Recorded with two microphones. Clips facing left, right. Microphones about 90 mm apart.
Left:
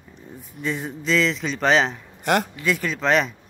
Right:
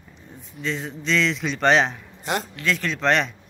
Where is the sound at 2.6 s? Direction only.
5° left (ahead or behind).